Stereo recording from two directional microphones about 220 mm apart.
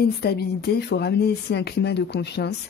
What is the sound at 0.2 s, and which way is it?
A woman's voice, 45° left (ahead or behind).